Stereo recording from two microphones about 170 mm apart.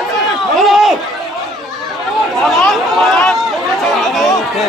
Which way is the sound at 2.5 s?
Centre (ahead or behind).